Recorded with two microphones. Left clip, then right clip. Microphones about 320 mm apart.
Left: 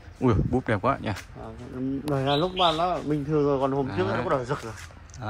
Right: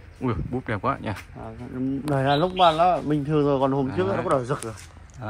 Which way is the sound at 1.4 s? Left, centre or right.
Right.